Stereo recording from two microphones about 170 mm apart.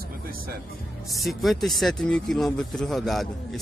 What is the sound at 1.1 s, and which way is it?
Speech, centre (ahead or behind).